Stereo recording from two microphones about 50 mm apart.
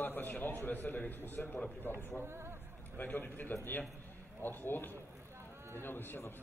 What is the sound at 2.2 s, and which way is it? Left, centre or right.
Speech, right.